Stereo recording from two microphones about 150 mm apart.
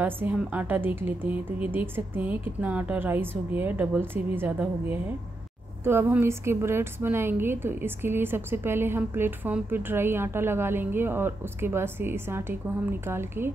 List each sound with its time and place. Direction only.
0.0 s a woman's voice: 10° right (ahead or behind)